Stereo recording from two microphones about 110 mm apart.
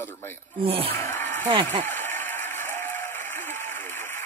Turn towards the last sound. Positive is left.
turn(degrees=20)  # may be behind; listen again after turning